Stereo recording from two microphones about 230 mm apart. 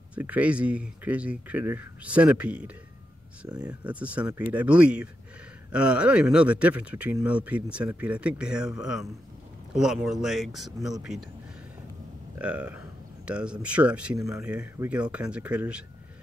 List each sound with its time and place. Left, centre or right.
0.1 s speech: centre
3.4 s speech: centre
3.8 s speech: centre
12.4 s speech: centre